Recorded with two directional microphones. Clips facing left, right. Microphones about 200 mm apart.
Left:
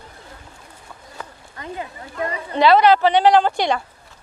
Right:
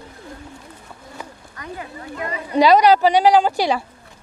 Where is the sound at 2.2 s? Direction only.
15° right (ahead or behind).